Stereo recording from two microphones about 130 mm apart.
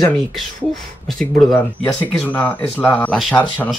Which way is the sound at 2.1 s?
10° left (ahead or behind).